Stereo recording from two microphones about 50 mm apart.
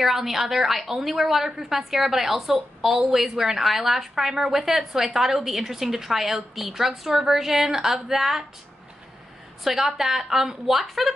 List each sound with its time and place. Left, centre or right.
0.0 s a woman's voice: centre
9.7 s a woman's voice: centre